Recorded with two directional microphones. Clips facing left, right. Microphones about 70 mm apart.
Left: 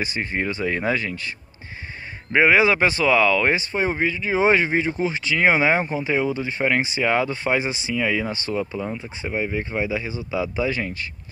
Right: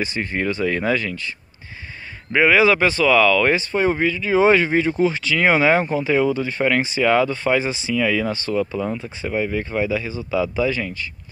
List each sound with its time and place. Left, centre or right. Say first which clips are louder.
0.0 s speech: right 2 dB; left
2.3 s speech: right 1 dB; left
8.3 s speech: right 3 dB; right
8.9 s speech: right 3 dB; centre
9.3 s speech: right 3 dB; left